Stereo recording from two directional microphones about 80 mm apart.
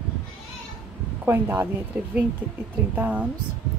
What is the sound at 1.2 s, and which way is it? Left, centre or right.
Speech, right.